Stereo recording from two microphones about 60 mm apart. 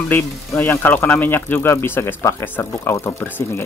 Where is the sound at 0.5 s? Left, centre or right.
Left.